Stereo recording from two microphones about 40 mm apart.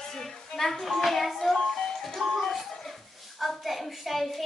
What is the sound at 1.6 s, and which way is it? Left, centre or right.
Music, centre.